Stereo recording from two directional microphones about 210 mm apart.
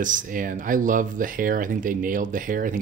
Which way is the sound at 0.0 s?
40° right (ahead or behind).